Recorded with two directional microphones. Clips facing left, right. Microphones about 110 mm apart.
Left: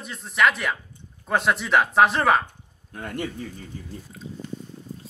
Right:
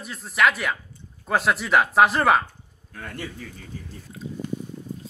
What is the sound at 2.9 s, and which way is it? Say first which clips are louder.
Speech: left 4 dB; 20° left (ahead or behind).